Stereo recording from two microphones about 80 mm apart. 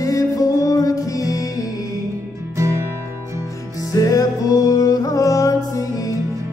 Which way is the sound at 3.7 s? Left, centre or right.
Left.